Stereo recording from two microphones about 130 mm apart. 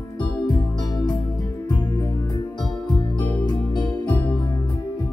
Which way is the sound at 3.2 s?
30° left (ahead or behind).